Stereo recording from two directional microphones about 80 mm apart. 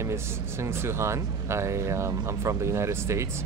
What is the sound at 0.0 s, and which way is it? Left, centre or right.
Speech, right.